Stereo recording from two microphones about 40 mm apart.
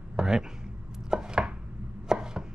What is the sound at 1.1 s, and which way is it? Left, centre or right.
Chopping, centre.